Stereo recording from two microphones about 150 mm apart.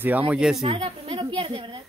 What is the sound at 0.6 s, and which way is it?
A woman's voice, 35° right (ahead or behind).